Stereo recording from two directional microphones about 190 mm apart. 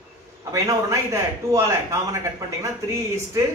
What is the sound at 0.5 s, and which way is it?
Speech, 15° right (ahead or behind).